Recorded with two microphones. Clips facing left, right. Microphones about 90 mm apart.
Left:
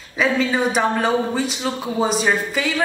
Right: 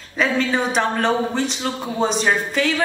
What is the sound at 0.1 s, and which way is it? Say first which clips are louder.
Speech: left 1 dB; 5° left (ahead or behind).